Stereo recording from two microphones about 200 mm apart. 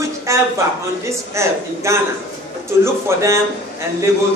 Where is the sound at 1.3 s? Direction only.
15° right (ahead or behind).